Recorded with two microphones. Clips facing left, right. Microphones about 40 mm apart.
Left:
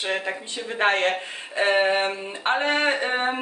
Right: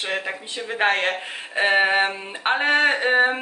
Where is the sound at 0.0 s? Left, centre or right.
Centre.